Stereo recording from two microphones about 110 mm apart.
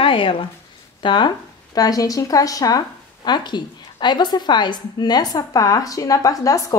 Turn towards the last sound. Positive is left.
turn(degrees=30)  # may be behind; listen again after turning